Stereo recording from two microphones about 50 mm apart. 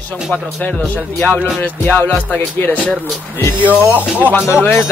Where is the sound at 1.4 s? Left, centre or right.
Left.